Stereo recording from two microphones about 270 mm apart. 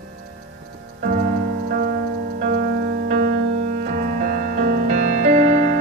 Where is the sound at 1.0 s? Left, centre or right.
Right.